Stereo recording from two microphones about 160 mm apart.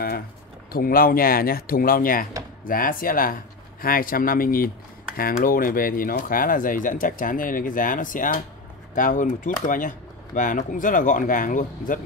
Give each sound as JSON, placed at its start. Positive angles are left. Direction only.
{"t": 0.7, "sound": "speech", "side_deg": 65}